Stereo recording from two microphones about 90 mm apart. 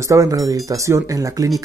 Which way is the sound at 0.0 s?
35° right (ahead or behind).